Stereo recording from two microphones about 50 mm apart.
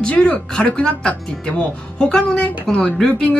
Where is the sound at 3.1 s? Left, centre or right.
Left.